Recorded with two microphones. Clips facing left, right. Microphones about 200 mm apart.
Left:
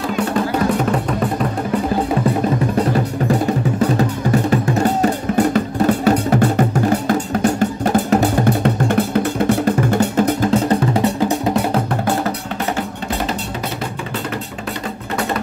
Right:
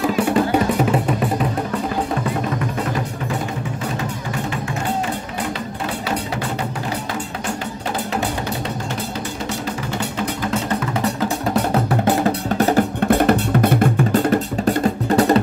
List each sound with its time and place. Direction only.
4.5 s music: 40° left (ahead or behind)
7.9 s drum: 45° left (ahead or behind)
13.1 s drum: 55° right (ahead or behind)
15.0 s music: 40° right (ahead or behind)